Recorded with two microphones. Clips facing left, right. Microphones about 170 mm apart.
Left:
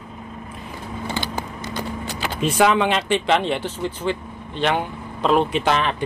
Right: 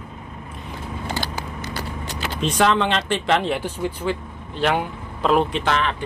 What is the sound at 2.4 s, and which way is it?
Speech, 10° left (ahead or behind).